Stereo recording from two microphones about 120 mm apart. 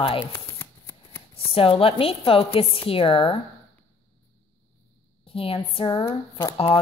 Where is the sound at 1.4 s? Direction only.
50° left (ahead or behind).